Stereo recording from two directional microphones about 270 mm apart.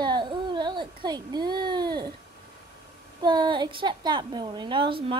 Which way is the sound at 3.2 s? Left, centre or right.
Centre.